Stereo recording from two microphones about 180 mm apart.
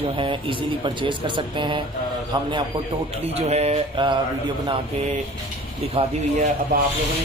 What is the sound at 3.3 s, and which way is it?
Mantra, 35° right (ahead or behind).